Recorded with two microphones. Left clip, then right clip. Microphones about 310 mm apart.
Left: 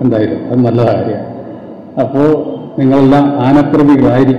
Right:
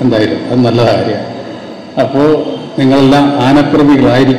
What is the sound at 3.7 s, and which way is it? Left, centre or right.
Speech, left.